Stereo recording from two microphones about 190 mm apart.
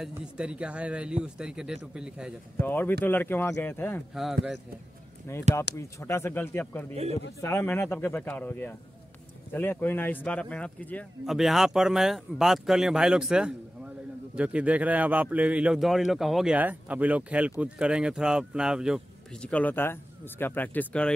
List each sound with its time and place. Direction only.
0.0 s speech: 5° right (ahead or behind)
2.6 s speech: 10° left (ahead or behind)
4.1 s speech: centre (ahead or behind)
5.3 s speech: 15° left (ahead or behind)
6.9 s a man's voice: 35° right (ahead or behind)
7.4 s a man's voice: 10° left (ahead or behind)